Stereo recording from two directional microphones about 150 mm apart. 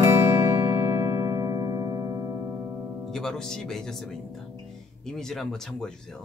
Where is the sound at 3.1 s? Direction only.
5° left (ahead or behind).